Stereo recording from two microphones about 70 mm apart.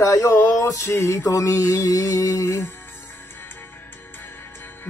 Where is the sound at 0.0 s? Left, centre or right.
Left.